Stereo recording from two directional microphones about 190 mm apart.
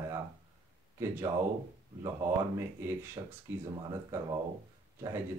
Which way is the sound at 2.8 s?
15° right (ahead or behind).